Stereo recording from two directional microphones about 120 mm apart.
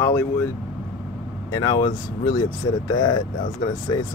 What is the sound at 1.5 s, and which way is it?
Speech, 35° left (ahead or behind).